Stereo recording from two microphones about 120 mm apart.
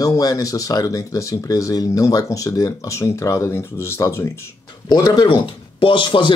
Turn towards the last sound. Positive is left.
turn(degrees=45)  # may be behind; listen again after turning